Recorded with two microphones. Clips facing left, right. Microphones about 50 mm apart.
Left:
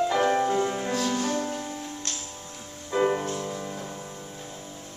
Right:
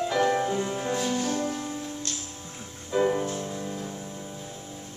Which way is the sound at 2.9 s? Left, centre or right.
Centre.